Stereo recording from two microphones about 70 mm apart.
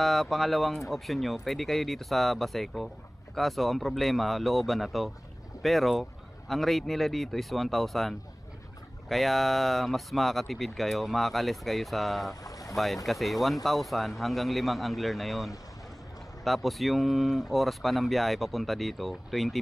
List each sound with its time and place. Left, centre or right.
0.0 s speech: centre
12.4 s boat: left
12.7 s speech: centre